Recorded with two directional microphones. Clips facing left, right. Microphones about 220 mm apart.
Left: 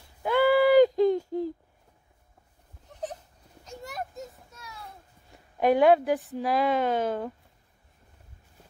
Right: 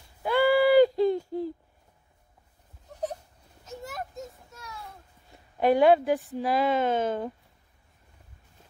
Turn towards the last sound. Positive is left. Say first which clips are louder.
# even
turn(degrees=10)  # may be behind; listen again after turning